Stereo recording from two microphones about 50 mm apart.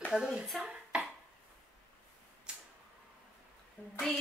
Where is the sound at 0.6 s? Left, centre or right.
Centre.